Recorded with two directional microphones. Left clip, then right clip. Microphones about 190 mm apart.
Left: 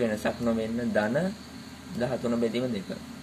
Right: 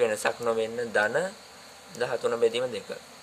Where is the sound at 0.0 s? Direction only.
65° right (ahead or behind).